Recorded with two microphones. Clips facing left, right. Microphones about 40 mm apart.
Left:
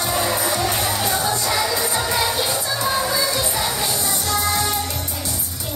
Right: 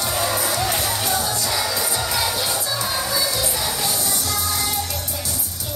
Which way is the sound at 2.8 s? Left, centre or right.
Left.